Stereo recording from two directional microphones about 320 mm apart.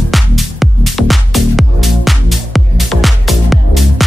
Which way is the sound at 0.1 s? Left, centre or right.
Centre.